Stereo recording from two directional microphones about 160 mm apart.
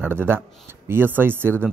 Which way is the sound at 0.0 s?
15° right (ahead or behind).